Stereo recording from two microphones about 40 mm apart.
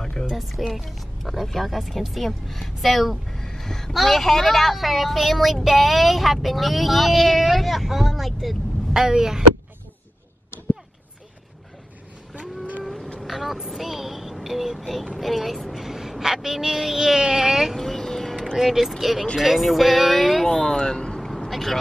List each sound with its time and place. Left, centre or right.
0.3 s speech: centre
3.3 s a sound: centre
3.9 s speech: centre
12.4 s a sound: right
12.8 s a sound: centre
13.3 s child singing: centre
17.7 s vehicle: centre
18.6 s speech: centre
20.4 s speech: centre
21.5 s vehicle: centre